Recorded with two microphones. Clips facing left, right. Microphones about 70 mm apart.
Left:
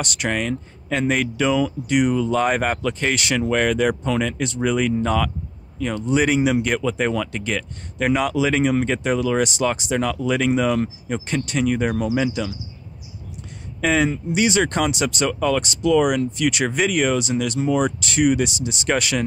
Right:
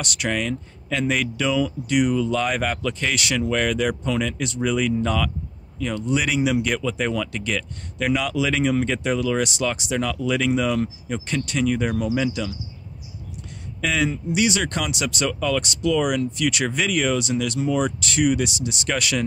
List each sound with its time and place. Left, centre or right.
0.0 s speech: left
13.7 s speech: left